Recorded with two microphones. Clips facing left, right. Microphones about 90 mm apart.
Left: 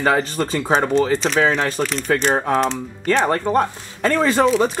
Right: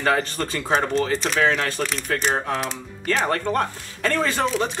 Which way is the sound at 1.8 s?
20° left (ahead or behind).